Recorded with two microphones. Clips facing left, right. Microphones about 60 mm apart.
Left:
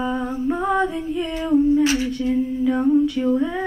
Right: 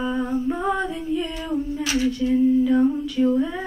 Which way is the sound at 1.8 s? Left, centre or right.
Left.